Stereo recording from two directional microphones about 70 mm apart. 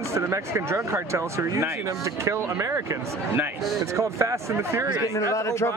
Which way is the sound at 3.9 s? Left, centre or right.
Right.